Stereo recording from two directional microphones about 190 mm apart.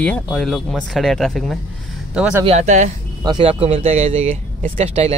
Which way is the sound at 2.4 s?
35° right (ahead or behind).